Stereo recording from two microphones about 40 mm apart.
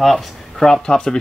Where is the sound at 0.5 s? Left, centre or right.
Centre.